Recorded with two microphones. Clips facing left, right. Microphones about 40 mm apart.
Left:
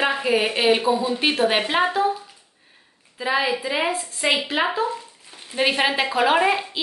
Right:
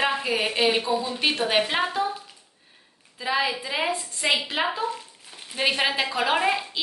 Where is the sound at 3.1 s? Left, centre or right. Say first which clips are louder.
Left 3 dB; centre.